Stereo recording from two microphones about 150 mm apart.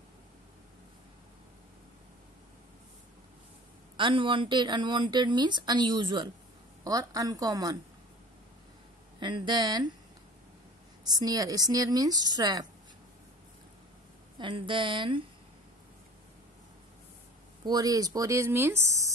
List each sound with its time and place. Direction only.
3.9 s a woman's voice: 35° right (ahead or behind)
9.2 s speech: 30° right (ahead or behind)
11.1 s a woman's voice: 25° right (ahead or behind)
14.4 s speech: 35° right (ahead or behind)
17.6 s a woman's voice: 25° right (ahead or behind)